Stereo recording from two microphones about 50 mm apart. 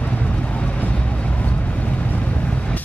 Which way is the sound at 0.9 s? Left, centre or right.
Left.